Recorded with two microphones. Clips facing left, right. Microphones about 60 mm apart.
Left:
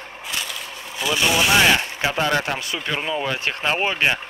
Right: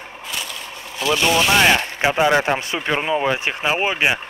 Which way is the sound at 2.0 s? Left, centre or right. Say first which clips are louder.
Right 7 dB; centre.